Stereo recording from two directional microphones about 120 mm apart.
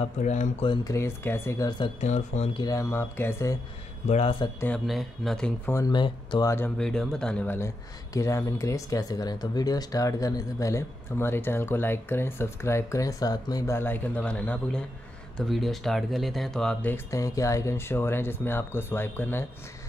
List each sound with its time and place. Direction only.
0.2 s speech: 90° left
0.8 s speech: 20° left (ahead or behind)
2.0 s speech: 70° left (ahead or behind)
2.5 s speech: 30° left (ahead or behind)
4.1 s speech: 55° left (ahead or behind)
4.7 s speech: centre (ahead or behind)
5.9 s speech: 40° left (ahead or behind)
6.4 s speech: 20° left (ahead or behind)
6.8 s speech: 5° left (ahead or behind)
7.5 s speech: 25° left (ahead or behind)
13.7 s speech: 15° left (ahead or behind)
16.8 s speech: 20° left (ahead or behind)